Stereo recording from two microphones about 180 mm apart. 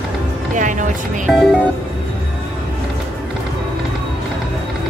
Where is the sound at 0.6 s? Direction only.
45° right (ahead or behind).